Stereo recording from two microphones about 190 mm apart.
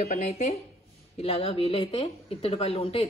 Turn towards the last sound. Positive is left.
turn(degrees=30)  # may be behind; listen again after turning